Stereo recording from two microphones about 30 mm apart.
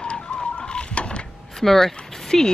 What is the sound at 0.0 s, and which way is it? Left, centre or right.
Printer, left.